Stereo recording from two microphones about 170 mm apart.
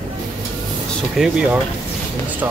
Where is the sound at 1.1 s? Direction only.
5° right (ahead or behind).